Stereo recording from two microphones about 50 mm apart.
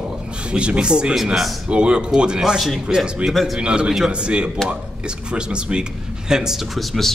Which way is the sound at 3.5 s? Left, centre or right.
Centre.